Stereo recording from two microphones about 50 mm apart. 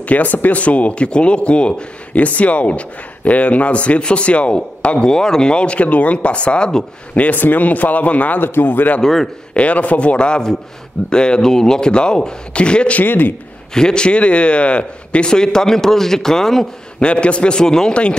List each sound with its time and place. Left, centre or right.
0.0 s speech: left
7.2 s speech: left
8.4 s speech: left
9.0 s a man's voice: centre
9.5 s a man's voice: left
13.0 s speech: left
13.7 s a man's voice: centre
17.0 s speech: left